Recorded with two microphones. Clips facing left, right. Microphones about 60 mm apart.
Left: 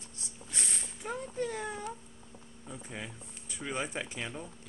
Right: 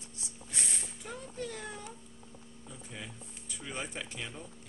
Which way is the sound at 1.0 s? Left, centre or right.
Left.